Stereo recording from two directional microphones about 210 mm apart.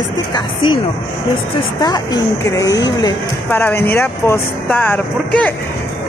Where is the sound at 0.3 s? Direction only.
20° left (ahead or behind).